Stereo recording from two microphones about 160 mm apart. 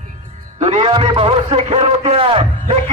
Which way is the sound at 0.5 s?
35° right (ahead or behind).